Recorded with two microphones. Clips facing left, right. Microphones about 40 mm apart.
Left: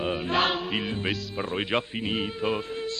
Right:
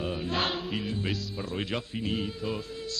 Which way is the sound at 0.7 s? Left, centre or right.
Left.